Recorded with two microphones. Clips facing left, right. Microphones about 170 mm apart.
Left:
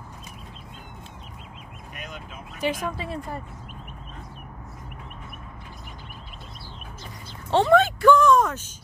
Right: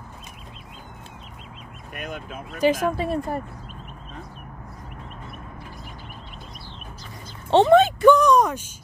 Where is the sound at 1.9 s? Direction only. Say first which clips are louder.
Right 7 dB; 55° right (ahead or behind).